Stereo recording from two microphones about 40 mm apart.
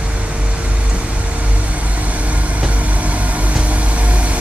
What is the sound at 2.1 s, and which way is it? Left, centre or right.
Vehicle, right.